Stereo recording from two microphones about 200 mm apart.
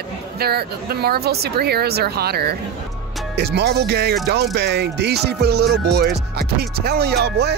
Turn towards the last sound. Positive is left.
turn(degrees=-55)  # may be behind; listen again after turning